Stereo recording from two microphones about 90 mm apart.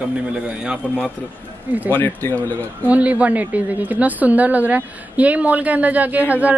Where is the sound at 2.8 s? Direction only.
15° right (ahead or behind).